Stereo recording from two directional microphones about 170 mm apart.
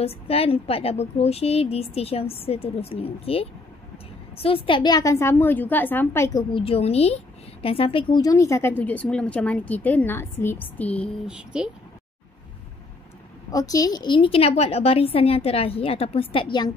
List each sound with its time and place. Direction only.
0.0 s a woman's voice: 35° left (ahead or behind)
4.6 s a woman's voice: 25° left (ahead or behind)
6.5 s a woman's voice: 35° left (ahead or behind); by 11.1 s 10° left (ahead or behind)
11.2 s speech: 5° right (ahead or behind)
13.5 s a woman's voice: 20° left (ahead or behind)